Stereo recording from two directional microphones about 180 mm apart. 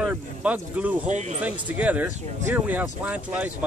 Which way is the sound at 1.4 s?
10° right (ahead or behind).